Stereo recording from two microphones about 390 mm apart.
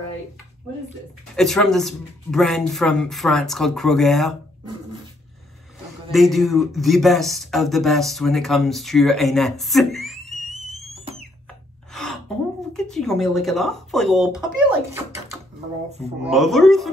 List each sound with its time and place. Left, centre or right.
1.3 s speech: centre
6.1 s speech: centre
11.9 s gasp: centre
12.7 s speech: centre
15.9 s speech: centre
16.3 s speech: centre